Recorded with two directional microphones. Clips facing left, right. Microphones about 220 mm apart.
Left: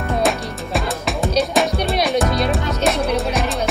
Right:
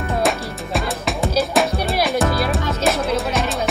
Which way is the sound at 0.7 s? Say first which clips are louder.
Even; centre (ahead or behind).